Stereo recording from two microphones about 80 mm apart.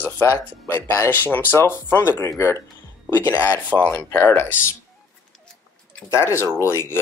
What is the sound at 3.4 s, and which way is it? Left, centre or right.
Speech, centre.